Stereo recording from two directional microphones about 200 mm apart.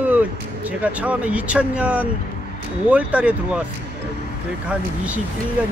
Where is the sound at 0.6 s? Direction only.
5° right (ahead or behind).